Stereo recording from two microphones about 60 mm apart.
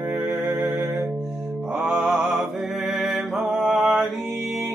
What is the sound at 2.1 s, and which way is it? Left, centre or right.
Mantra, centre.